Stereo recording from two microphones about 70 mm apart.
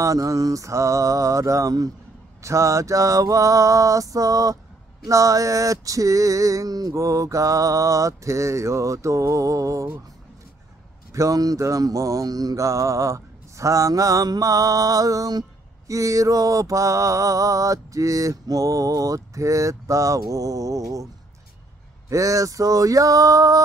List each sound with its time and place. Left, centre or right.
0.0 s mantra: right
2.4 s mantra: right
11.1 s mantra: right
15.9 s mantra: right
22.1 s a sound: right